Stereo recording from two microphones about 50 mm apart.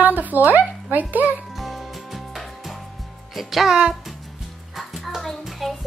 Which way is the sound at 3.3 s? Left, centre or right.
Centre.